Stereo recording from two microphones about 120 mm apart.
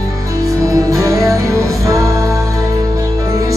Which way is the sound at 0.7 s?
25° right (ahead or behind).